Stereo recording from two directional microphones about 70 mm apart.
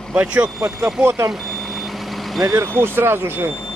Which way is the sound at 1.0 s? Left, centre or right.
Right.